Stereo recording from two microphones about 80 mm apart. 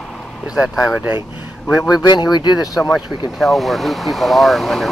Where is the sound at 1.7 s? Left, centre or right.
Centre.